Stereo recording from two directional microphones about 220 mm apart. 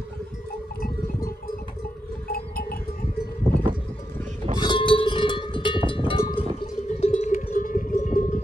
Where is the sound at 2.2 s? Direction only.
45° left (ahead or behind).